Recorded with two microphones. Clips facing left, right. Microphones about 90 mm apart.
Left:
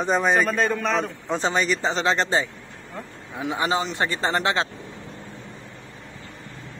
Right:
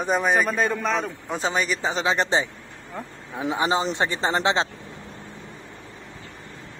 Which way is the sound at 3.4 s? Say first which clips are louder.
Right 1 dB; 25° right (ahead or behind).